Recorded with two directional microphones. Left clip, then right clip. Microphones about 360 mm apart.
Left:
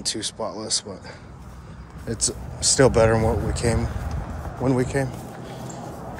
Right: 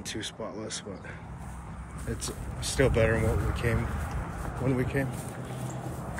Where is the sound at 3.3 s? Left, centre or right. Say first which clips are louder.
Left 7 dB; centre.